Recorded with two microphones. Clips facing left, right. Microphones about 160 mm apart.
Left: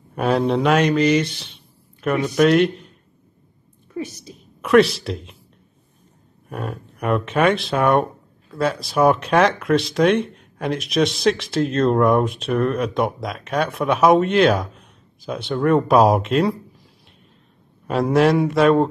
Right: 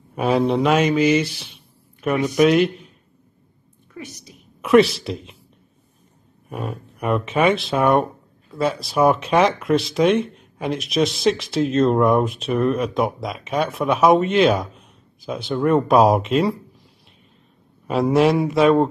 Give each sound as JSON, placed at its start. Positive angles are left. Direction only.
{"t": 0.1, "sound": "a man's voice", "side_deg": 0}
{"t": 3.9, "sound": "a sound", "side_deg": 30}
{"t": 4.6, "sound": "speech", "side_deg": 0}
{"t": 6.5, "sound": "speech", "side_deg": 0}
{"t": 17.8, "sound": "speech", "side_deg": 0}